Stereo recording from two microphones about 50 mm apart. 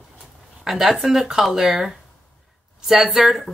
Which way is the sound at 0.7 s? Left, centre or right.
Centre.